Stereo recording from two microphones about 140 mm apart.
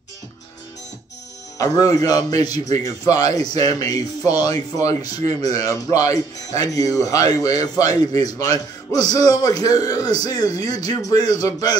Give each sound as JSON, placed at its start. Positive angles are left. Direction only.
{"t": 1.6, "sound": "a man's voice", "side_deg": 25}